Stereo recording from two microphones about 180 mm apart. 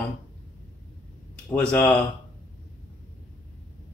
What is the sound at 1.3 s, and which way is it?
Speech, 5° left (ahead or behind).